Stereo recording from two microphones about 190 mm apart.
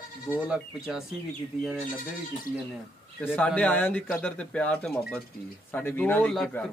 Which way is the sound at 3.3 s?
5° left (ahead or behind).